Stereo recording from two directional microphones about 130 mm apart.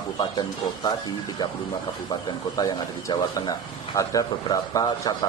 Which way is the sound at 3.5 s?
30° left (ahead or behind).